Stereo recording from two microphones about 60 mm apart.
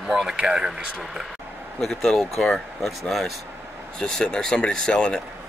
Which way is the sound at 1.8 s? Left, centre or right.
Centre.